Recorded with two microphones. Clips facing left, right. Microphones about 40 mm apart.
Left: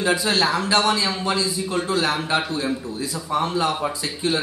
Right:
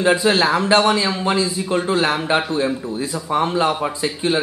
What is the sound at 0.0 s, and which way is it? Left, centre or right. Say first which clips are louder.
A man's voice: right 4 dB; centre.